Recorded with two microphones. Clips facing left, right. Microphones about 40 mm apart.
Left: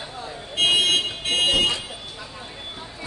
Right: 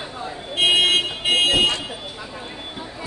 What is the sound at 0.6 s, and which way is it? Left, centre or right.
Car alarm, centre.